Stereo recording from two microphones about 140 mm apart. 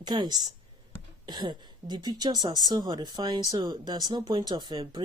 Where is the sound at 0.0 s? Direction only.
30° right (ahead or behind).